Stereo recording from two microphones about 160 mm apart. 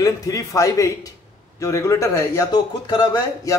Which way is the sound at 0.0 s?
20° left (ahead or behind).